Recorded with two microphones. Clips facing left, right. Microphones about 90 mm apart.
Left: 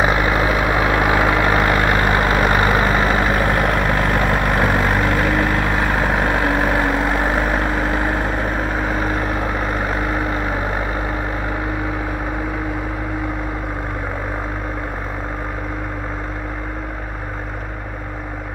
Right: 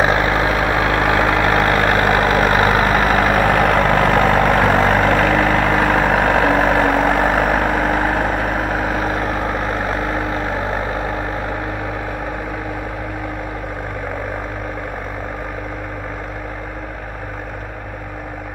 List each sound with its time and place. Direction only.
0.4 s vehicle: 35° right (ahead or behind)
0.7 s vehicle: 25° left (ahead or behind)
1.6 s vehicle: 35° right (ahead or behind)